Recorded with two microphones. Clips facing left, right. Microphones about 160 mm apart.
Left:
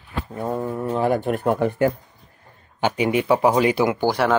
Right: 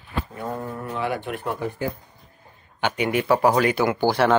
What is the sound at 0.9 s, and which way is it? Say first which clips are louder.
Speech: left 7 dB; 45° left (ahead or behind).